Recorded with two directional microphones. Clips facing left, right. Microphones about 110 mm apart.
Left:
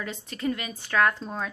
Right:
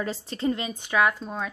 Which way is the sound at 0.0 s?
30° right (ahead or behind).